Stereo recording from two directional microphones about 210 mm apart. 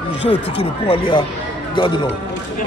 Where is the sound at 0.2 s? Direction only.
25° left (ahead or behind).